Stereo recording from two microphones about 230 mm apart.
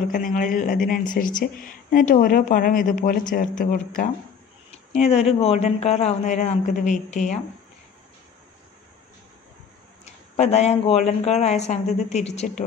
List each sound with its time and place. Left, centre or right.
0.1 s speech: left
10.0 s speech: left